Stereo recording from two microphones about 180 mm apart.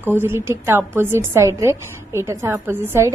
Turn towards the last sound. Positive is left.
turn(degrees=-15)  # may be behind; listen again after turning